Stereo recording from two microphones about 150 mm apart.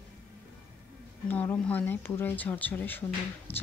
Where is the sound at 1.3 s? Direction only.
10° left (ahead or behind).